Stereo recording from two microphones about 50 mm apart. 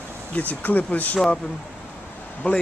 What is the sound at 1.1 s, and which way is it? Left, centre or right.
Speech, centre.